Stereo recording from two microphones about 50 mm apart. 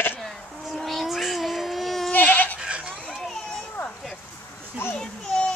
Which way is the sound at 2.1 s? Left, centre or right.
Left.